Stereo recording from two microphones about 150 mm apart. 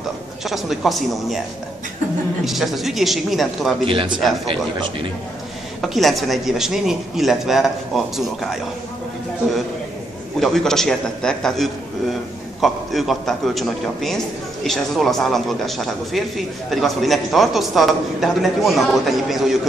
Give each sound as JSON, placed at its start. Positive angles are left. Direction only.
{"t": 0.5, "sound": "a man's voice", "side_deg": 0}
{"t": 2.4, "sound": "a man's voice", "side_deg": 0}
{"t": 3.8, "sound": "speech", "side_deg": -35}
{"t": 5.8, "sound": "a man's voice", "side_deg": 0}
{"t": 10.4, "sound": "a man's voice", "side_deg": 0}